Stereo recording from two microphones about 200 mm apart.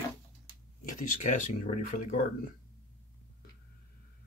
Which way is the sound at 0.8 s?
40° left (ahead or behind).